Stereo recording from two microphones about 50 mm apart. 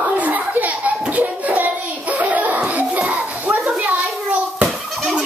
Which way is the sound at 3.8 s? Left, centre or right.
Right.